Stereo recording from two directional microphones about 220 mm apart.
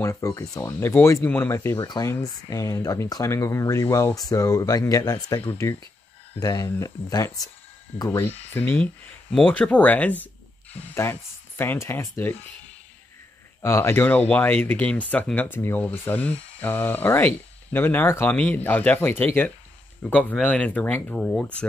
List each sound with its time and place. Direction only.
0.0 s speech: 15° left (ahead or behind)
13.6 s speech: 15° left (ahead or behind)